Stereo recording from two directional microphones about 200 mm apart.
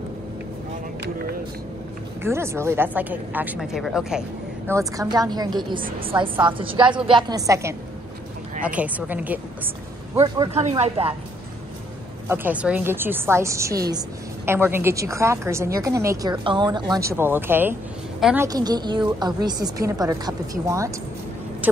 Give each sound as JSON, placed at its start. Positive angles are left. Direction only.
{"t": 2.2, "sound": "a woman's voice", "side_deg": -15}
{"t": 4.6, "sound": "a woman's voice", "side_deg": -15}
{"t": 10.1, "sound": "a woman's voice", "side_deg": -20}
{"t": 12.3, "sound": "a woman's voice", "side_deg": -10}